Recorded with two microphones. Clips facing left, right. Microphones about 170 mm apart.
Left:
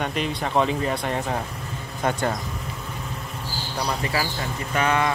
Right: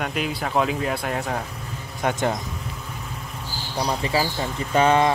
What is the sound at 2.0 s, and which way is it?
Speech, 10° right (ahead or behind).